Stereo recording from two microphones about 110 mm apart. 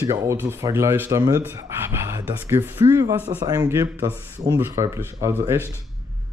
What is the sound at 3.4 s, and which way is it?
Speech, 35° right (ahead or behind).